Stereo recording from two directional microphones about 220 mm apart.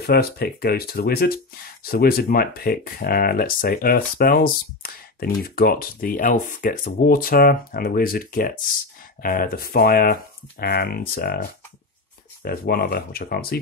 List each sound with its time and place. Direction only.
0.0 s speech: 45° left (ahead or behind)
12.4 s speech: 45° left (ahead or behind)